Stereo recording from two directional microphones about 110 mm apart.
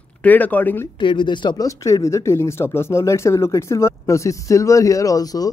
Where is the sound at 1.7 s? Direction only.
30° left (ahead or behind).